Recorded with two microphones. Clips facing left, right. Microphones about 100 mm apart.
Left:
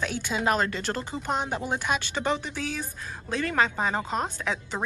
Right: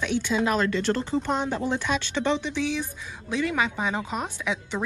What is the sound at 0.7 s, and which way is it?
Speech, 5° left (ahead or behind).